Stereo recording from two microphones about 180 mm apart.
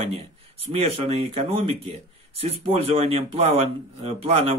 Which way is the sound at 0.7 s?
35° right (ahead or behind).